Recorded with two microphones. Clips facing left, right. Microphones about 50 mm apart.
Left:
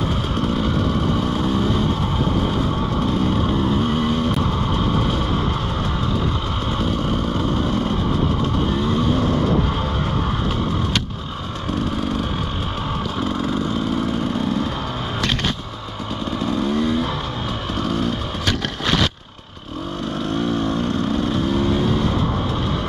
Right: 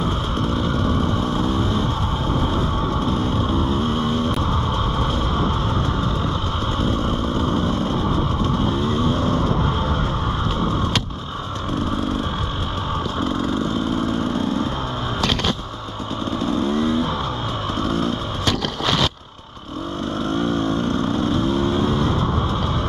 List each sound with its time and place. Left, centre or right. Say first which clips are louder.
0.4 s vehicle: left 2 dB; left
3.1 s vehicle: left 1 dB; left
6.8 s vehicle: even; left
8.9 s vehicle: left 1 dB; left
16.3 s vehicle: even; left
20.5 s vehicle: even; left